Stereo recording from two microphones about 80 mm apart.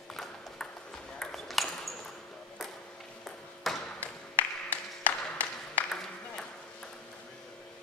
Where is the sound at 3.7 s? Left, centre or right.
Centre.